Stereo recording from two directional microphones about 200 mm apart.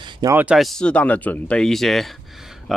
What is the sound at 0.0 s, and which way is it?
Speech, 20° right (ahead or behind).